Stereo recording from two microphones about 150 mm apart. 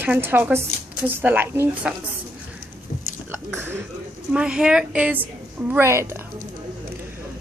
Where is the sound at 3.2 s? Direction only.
15° right (ahead or behind).